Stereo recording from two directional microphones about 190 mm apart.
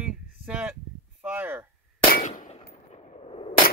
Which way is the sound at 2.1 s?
40° left (ahead or behind).